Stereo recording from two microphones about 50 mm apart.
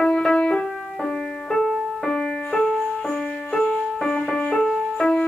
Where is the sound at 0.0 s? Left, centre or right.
Centre.